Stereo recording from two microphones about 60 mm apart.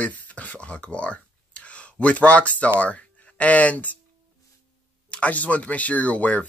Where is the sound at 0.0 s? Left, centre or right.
Left.